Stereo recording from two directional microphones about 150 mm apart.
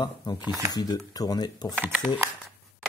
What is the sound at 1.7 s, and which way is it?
Speech, 10° right (ahead or behind).